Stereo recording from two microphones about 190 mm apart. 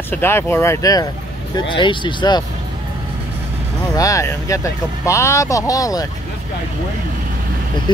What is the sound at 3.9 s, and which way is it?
Speech, 15° left (ahead or behind).